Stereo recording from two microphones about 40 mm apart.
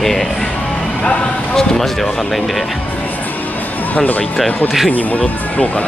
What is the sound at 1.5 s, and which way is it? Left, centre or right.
Speech, centre.